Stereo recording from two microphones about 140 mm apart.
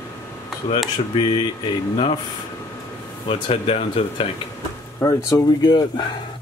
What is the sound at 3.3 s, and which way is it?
Speech, 45° left (ahead or behind).